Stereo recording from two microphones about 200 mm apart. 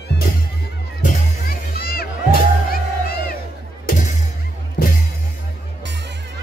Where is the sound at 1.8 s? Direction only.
50° left (ahead or behind).